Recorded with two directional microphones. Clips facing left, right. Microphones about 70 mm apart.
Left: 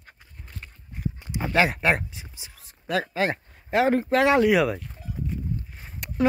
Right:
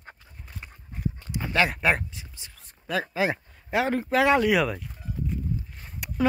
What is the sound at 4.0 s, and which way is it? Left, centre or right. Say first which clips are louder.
Speech: left 1 dB; centre.